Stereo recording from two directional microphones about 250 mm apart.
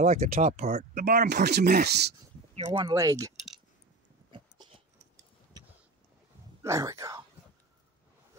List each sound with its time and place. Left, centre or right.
0.0 s speech: right
2.5 s speech: right
4.3 s dog: right
5.5 s vehicle: centre
6.6 s speech: centre